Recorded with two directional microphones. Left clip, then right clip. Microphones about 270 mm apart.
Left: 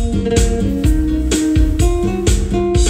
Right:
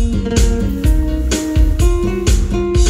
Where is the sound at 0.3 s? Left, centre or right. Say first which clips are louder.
Left 3 dB; centre.